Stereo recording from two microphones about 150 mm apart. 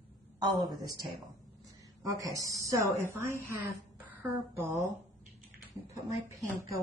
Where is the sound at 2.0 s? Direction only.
25° right (ahead or behind).